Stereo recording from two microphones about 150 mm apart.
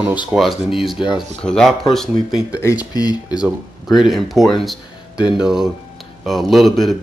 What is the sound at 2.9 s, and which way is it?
Speech, 25° left (ahead or behind).